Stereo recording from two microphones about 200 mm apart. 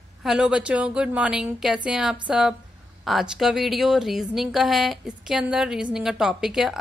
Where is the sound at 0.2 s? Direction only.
5° right (ahead or behind).